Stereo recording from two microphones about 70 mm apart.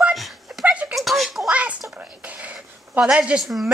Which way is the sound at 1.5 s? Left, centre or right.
Centre.